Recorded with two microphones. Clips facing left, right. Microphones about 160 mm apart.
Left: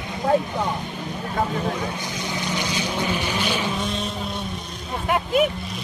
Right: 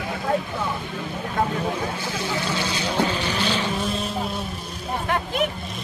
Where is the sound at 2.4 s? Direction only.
15° left (ahead or behind).